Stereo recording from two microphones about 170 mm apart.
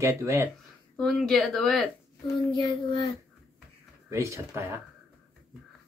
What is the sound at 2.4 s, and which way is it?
Child singing, 30° left (ahead or behind).